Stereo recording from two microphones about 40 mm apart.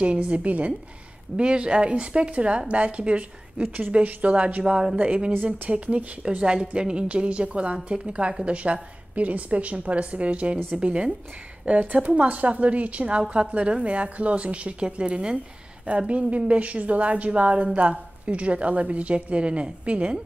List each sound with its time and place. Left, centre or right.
0.0 s a woman's voice: right
1.3 s a woman's voice: right
4.6 s a woman's voice: centre
9.1 s a woman's voice: right
11.6 s a woman's voice: right